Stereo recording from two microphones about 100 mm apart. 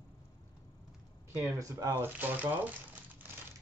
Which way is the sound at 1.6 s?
35° right (ahead or behind).